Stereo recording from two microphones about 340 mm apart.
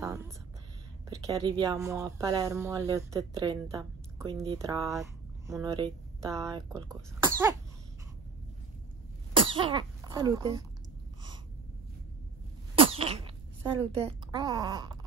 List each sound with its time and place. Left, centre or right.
0.0 s a sound: centre
1.0 s speech: centre
9.3 s speech: centre
12.7 s sneeze: centre
14.3 s speech: centre